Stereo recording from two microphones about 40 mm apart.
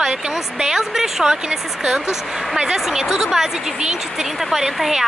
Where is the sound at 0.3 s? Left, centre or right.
Centre.